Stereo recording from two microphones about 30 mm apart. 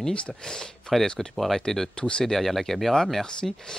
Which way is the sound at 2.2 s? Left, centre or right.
Centre.